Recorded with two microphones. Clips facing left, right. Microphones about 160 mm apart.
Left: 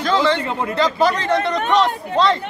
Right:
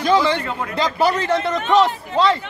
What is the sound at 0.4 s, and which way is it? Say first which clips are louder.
Speech: left 3 dB; 25° left (ahead or behind).